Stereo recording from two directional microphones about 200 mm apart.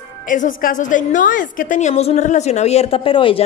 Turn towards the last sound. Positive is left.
turn(degrees=25)  # may be behind; listen again after turning